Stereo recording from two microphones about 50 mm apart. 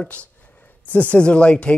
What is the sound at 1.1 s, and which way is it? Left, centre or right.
Speech, left.